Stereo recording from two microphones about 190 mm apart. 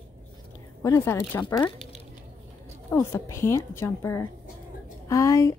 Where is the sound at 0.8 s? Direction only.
15° left (ahead or behind).